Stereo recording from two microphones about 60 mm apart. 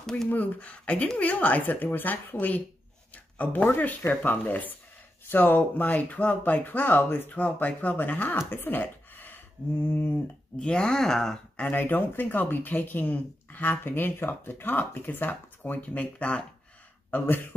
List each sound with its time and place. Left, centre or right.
0.3 s speech: left
10.1 s speech: centre
11.7 s speech: left
17.1 s speech: left